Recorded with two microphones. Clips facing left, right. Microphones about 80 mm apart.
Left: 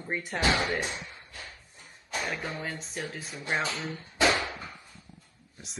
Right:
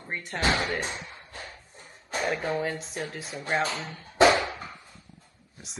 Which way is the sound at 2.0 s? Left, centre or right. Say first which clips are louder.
Right 5 dB; right.